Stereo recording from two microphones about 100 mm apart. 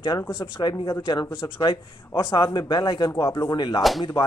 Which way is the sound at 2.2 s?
45° left (ahead or behind).